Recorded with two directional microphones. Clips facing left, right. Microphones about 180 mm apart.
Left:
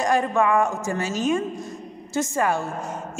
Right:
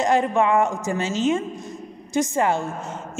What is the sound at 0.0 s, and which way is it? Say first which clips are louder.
A woman's voice: right 1 dB; 20° right (ahead or behind).